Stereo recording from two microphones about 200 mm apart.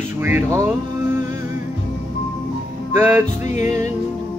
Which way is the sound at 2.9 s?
10° right (ahead or behind).